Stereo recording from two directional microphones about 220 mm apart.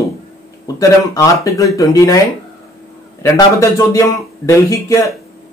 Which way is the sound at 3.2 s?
15° left (ahead or behind).